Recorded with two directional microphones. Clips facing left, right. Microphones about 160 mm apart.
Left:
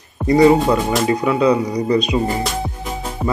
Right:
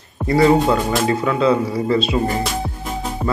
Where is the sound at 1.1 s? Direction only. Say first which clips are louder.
Left 2 dB; 15° left (ahead or behind).